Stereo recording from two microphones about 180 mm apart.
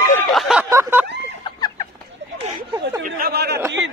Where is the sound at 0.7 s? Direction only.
15° right (ahead or behind).